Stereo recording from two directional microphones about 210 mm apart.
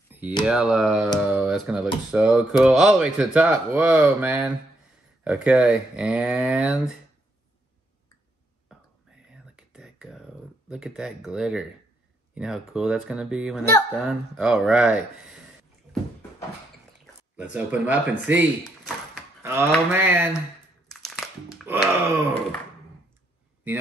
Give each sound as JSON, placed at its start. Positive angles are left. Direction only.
{"t": 0.4, "sound": "speech", "side_deg": -5}
{"t": 9.3, "sound": "whispering", "side_deg": -5}
{"t": 12.4, "sound": "speech", "side_deg": -5}
{"t": 15.9, "sound": "a sound", "side_deg": 10}
{"t": 17.0, "sound": "speech", "side_deg": -5}
{"t": 20.9, "sound": "a sound", "side_deg": 0}
{"t": 21.6, "sound": "speech", "side_deg": -10}